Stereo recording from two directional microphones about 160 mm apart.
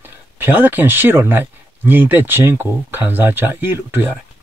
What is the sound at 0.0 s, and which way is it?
Speech, 10° right (ahead or behind).